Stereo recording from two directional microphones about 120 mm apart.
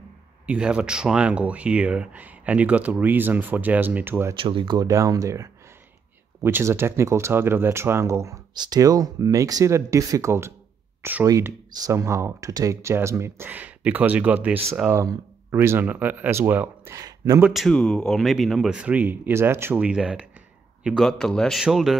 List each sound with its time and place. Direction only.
0.5 s speech: 10° right (ahead or behind)
4.4 s speech: 45° right (ahead or behind); by 11.2 s 15° right (ahead or behind)
11.2 s speech: 30° right (ahead or behind)
16.9 s speech: 30° right (ahead or behind)
17.5 s speech: centre (ahead or behind); by 19.8 s 20° right (ahead or behind)
19.8 s speech: 5° right (ahead or behind)
21.0 s speech: 5° left (ahead or behind)